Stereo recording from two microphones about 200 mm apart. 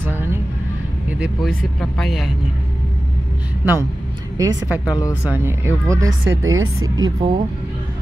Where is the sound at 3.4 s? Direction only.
10° right (ahead or behind).